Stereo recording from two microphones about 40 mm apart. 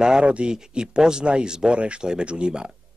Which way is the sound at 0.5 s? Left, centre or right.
Centre.